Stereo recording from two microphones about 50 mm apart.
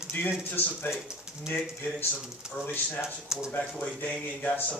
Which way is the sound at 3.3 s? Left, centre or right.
Centre.